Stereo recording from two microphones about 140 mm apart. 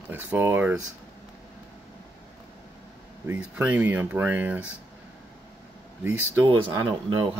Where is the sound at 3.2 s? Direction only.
15° right (ahead or behind).